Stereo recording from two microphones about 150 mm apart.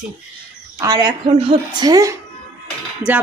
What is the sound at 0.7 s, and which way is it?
A woman's voice, 25° right (ahead or behind).